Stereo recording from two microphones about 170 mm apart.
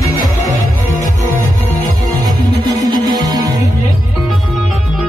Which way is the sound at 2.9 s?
25° right (ahead or behind).